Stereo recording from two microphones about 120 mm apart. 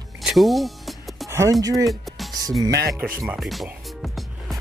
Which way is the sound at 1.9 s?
Centre (ahead or behind).